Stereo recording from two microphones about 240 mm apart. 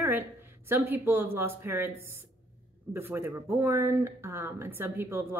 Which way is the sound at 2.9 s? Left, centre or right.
Centre.